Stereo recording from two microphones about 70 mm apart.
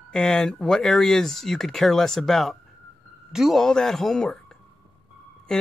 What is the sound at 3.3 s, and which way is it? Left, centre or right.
Speech, centre.